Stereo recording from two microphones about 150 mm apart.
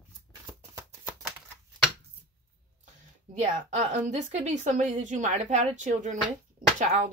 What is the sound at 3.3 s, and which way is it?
A woman's voice, 55° right (ahead or behind).